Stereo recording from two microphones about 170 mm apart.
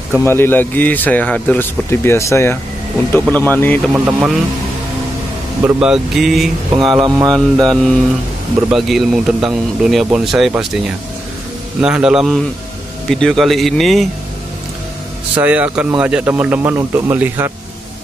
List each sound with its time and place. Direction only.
0.1 s speech: 15° left (ahead or behind)
3.9 s speech: 10° right (ahead or behind)
5.6 s speech: 5° right (ahead or behind)
6.9 s speech: 25° right (ahead or behind)
7.6 s speech: 5° left (ahead or behind)
11.8 s speech: 5° right (ahead or behind)
15.3 s speech: 10° right (ahead or behind)